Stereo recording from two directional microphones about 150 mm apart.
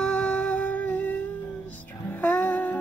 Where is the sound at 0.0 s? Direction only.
10° left (ahead or behind).